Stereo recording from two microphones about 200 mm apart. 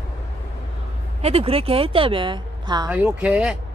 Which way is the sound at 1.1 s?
30° right (ahead or behind).